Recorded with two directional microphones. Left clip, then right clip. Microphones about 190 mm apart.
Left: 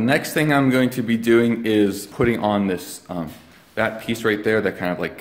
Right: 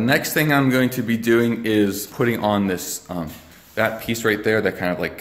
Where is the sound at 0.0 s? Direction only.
10° left (ahead or behind).